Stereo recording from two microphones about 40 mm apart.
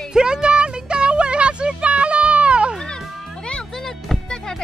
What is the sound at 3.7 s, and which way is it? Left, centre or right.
Music, centre.